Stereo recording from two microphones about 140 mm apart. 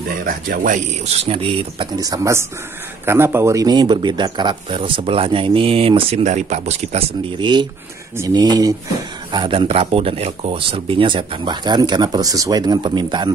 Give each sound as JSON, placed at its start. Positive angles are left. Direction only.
{"t": 0.2, "sound": "speech", "side_deg": -85}
{"t": 1.0, "sound": "speech", "side_deg": -45}
{"t": 2.0, "sound": "speech", "side_deg": -25}
{"t": 7.3, "sound": "speech", "side_deg": -35}